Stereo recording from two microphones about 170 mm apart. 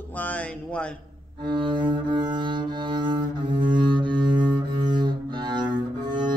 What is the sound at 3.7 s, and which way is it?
Cello, 25° right (ahead or behind).